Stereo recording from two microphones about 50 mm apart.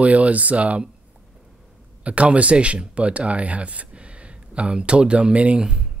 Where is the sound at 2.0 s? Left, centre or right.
Right.